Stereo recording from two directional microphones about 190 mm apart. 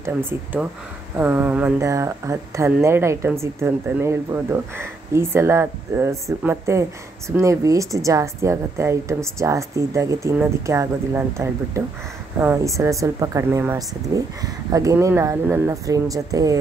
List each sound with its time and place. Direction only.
0.0 s speech: 10° right (ahead or behind)